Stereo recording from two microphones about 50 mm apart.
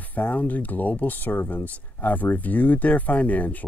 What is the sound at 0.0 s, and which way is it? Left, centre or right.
Speech, left.